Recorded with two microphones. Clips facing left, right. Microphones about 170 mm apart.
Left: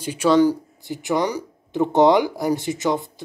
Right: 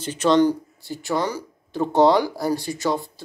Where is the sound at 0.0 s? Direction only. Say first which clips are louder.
Left 1 dB; 10° left (ahead or behind).